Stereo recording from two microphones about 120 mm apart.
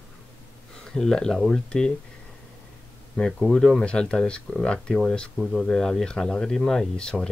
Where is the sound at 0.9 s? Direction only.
5° left (ahead or behind).